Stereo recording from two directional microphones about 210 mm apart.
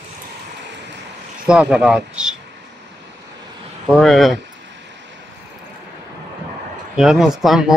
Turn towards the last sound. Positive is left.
turn(degrees=0)  # may be behind; listen again after turning